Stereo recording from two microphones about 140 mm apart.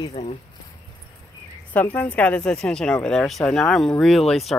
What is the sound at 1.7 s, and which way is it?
Speech, 10° left (ahead or behind).